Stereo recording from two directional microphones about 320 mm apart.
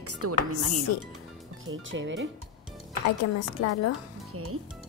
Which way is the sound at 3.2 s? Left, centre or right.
Left.